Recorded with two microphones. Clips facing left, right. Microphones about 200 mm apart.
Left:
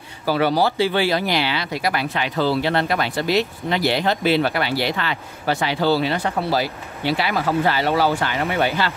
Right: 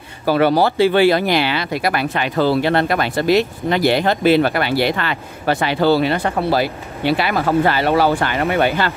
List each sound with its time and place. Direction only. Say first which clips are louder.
0.3 s speech: right 4 dB; 55° right (ahead or behind)